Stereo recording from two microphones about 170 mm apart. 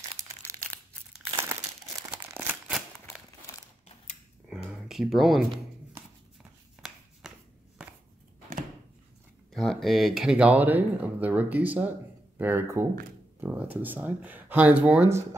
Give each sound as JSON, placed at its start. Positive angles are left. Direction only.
{"t": 0.5, "sound": "crumpling", "side_deg": -15}
{"t": 2.3, "sound": "crumpling", "side_deg": -5}
{"t": 4.6, "sound": "a sound", "side_deg": 0}
{"t": 6.8, "sound": "chopping", "side_deg": 0}
{"t": 9.5, "sound": "speech", "side_deg": 0}